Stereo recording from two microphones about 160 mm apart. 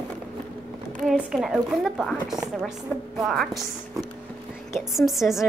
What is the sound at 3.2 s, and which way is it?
Speech, centre (ahead or behind).